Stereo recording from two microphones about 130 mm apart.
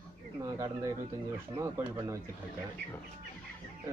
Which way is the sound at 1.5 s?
20° right (ahead or behind).